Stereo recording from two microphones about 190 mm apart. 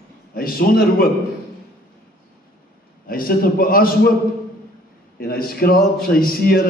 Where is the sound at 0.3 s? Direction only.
50° left (ahead or behind).